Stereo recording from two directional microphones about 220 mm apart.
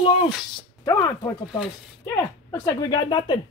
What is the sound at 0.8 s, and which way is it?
Speech, 15° left (ahead or behind).